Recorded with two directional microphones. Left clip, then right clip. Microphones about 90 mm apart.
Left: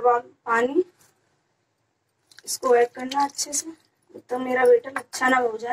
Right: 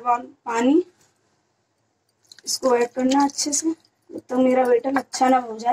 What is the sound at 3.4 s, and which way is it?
Speech, 30° right (ahead or behind).